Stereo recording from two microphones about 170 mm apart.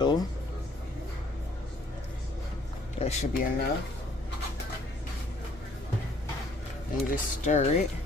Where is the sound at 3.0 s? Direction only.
40° left (ahead or behind).